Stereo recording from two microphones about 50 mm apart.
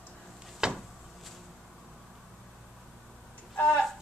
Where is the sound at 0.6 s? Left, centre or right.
Centre.